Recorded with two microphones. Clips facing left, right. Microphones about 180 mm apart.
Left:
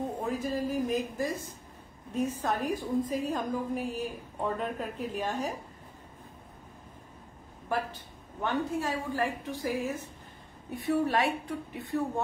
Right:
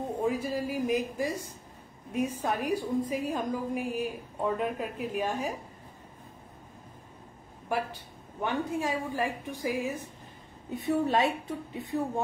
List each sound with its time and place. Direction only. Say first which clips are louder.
0.2 s a woman's voice: right 4 dB; 10° right (ahead or behind)
8.4 s a woman's voice: even; 15° right (ahead or behind)